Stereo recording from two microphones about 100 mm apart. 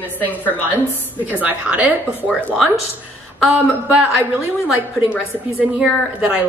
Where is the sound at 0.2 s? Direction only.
15° left (ahead or behind).